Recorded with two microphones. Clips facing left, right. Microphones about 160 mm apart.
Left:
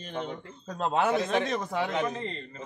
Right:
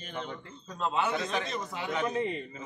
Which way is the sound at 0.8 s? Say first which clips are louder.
Left 4 dB; 50° left (ahead or behind).